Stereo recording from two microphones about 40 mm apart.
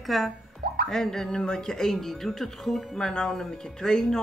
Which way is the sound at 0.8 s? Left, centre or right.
Centre.